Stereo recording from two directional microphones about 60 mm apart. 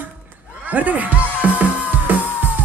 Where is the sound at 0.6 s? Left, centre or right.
Right.